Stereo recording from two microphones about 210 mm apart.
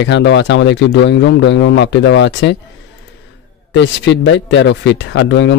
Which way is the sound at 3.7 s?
55° left (ahead or behind).